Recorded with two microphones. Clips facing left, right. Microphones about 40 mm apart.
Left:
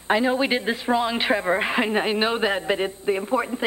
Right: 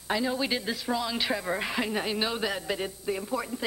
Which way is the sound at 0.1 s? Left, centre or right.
Left.